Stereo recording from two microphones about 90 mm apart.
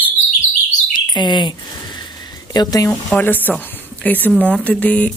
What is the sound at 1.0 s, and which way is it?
Speech, 55° left (ahead or behind).